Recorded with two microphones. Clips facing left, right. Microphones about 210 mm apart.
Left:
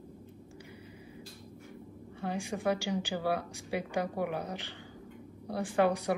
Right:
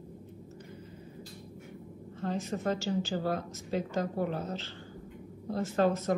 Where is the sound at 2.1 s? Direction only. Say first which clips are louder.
Right 2 dB; 10° left (ahead or behind).